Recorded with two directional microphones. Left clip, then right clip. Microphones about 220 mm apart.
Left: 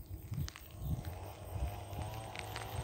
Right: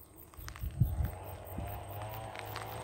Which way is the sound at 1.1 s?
35° left (ahead or behind).